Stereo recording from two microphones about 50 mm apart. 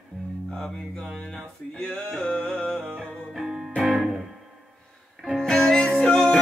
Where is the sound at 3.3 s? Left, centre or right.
Centre.